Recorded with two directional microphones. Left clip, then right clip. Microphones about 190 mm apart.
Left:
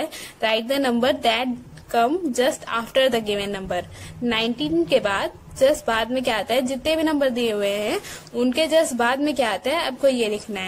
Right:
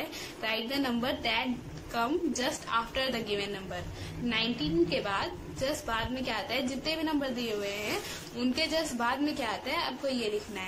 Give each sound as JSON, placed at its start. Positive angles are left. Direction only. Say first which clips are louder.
{"t": 0.4, "sound": "a woman's voice", "louder": "left 11 dB", "side_deg": 50}